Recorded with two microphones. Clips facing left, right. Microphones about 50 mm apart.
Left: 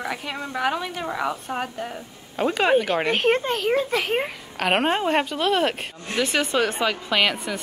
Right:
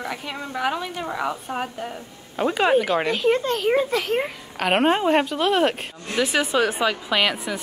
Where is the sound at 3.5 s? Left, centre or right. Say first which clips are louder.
Right 1 dB; centre.